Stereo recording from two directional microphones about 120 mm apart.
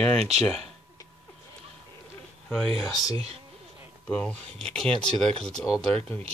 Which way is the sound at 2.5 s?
Centre (ahead or behind).